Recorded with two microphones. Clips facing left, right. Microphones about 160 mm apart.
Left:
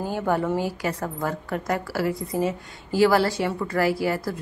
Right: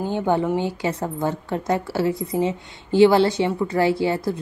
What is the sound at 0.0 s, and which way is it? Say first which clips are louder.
A woman's voice: right 3 dB; 25° right (ahead or behind).